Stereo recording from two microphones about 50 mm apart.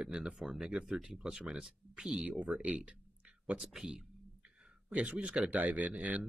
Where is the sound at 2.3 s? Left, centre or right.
Right.